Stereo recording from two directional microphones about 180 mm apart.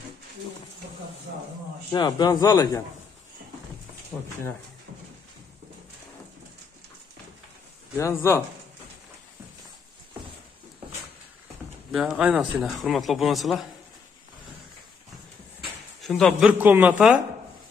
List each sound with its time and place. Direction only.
1.9 s a man's voice: 25° left (ahead or behind)
7.9 s speech: 15° left (ahead or behind)
11.9 s speech: 5° right (ahead or behind)
16.0 s speech: 5° left (ahead or behind)
16.4 s a man's voice: 10° right (ahead or behind)